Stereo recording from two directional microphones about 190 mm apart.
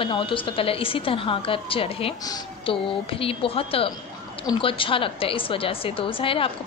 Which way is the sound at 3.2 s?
30° left (ahead or behind).